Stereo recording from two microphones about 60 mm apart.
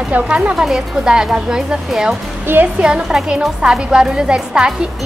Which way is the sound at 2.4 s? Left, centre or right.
Right.